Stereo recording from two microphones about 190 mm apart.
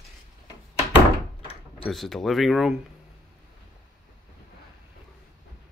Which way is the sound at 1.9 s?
Centre (ahead or behind).